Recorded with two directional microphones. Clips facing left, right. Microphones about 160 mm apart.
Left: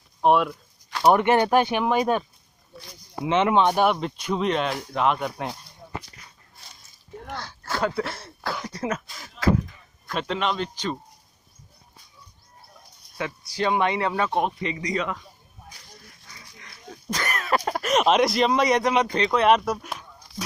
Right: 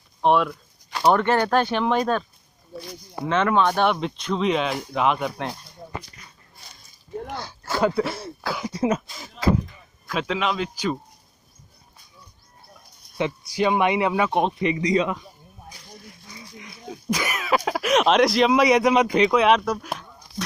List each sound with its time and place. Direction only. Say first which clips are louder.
0.2 s speech: even; 5° left (ahead or behind)
1.0 s speech: left 1 dB; 15° left (ahead or behind)
3.3 s speech: left 1 dB; 20° left (ahead or behind)
3.8 s speech: even; 5° left (ahead or behind)
7.2 s a sound: right 2 dB; 10° right (ahead or behind)
8.8 s speech: right 7 dB; 25° right (ahead or behind)
10.0 s speech: right 1 dB; centre (ahead or behind)
13.2 s speech: right 4 dB; 15° right (ahead or behind)
16.3 s speech: right 8 dB; 15° right (ahead or behind)
19.4 s speech: even; 5° left (ahead or behind)